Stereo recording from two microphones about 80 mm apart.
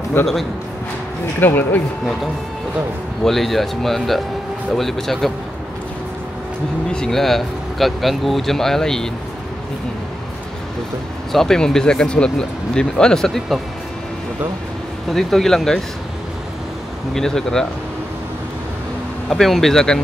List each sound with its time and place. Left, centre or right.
0.2 s speech: centre
1.4 s speech: left
3.3 s speech: centre
6.9 s speech: centre
11.3 s speech: centre
15.1 s speech: centre
17.1 s speech: centre
19.2 s speech: centre